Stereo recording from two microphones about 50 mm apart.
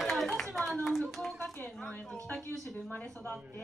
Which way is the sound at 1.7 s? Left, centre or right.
Left.